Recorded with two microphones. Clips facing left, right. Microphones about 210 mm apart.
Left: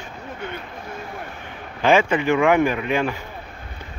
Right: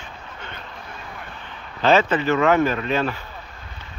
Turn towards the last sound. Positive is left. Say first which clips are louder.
# left 1 dB
turn(degrees=15)  # may be behind; listen again after turning